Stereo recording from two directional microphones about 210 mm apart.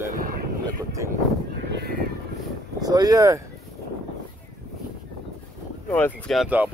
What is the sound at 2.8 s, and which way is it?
Speech, 15° right (ahead or behind).